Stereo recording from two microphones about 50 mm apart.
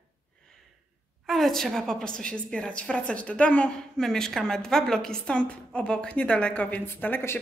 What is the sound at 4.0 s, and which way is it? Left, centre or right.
A woman's voice, centre.